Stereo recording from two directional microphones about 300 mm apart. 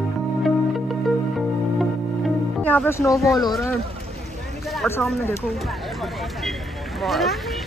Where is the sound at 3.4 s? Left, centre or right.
Centre.